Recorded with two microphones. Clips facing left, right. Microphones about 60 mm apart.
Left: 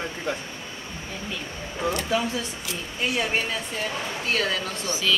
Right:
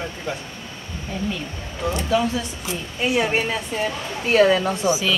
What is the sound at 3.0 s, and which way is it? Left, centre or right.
Speech, centre.